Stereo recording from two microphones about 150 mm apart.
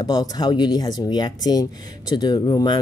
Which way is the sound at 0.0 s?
25° left (ahead or behind).